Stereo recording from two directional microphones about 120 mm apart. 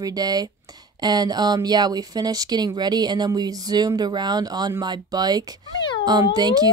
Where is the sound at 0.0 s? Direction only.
30° right (ahead or behind).